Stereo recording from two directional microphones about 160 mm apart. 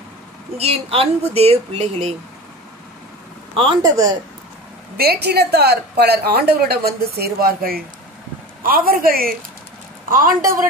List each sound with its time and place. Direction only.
0.6 s speech: 40° right (ahead or behind)
3.8 s speech: 20° right (ahead or behind)
4.9 s a man's voice: 80° right; by 10.7 s 60° right (ahead or behind)